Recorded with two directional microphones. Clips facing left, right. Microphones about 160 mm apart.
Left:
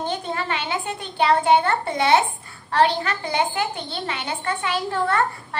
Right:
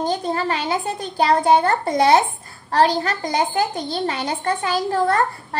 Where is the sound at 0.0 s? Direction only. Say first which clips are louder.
Right 5 dB; 35° right (ahead or behind).